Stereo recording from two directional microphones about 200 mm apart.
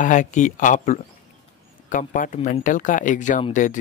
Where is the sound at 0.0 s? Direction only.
40° left (ahead or behind).